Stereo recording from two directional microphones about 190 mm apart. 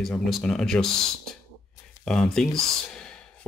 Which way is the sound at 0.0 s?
Centre (ahead or behind).